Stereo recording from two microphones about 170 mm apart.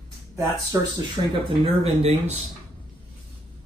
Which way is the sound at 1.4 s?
35° right (ahead or behind).